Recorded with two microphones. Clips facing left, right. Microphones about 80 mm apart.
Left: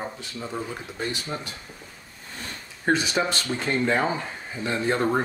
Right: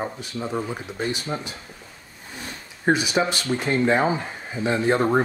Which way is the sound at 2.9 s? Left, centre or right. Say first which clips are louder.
Right 2 dB; centre.